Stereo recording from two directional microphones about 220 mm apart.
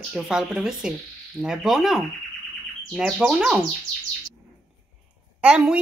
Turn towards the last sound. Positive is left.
turn(degrees=-5)  # may be behind; listen again after turning